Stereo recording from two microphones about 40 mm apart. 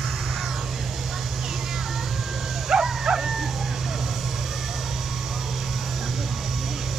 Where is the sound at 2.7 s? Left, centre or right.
Centre.